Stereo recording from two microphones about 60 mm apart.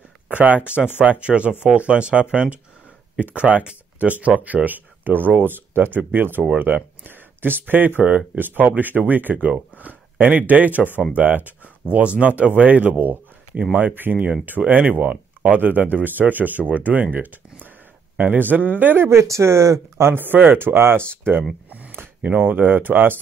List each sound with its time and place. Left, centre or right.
0.3 s speech: right
14.6 s speech: centre
15.0 s speech: right
19.0 s speech: right
20.1 s speech: right
20.5 s speech: right
21.7 s a sound: right
22.3 s speech: right